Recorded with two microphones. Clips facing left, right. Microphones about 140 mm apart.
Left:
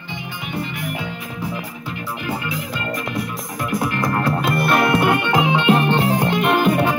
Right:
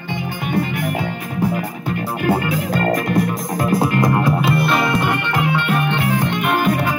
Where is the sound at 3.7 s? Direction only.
25° right (ahead or behind).